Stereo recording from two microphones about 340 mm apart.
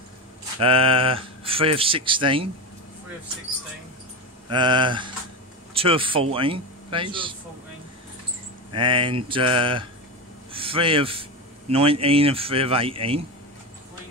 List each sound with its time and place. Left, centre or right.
0.6 s speech: centre
4.5 s speech: centre
8.7 s speech: centre